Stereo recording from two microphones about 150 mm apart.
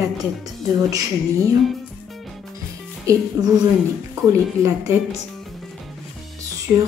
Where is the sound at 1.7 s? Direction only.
Centre (ahead or behind).